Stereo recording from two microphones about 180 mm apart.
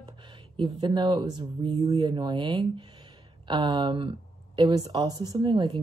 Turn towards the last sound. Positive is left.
turn(degrees=-25)  # may be behind; listen again after turning